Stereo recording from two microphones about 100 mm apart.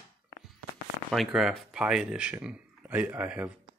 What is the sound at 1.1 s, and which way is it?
Speech, centre (ahead or behind).